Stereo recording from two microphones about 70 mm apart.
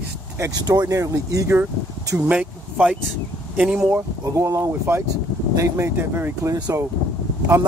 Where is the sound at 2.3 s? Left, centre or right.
Centre.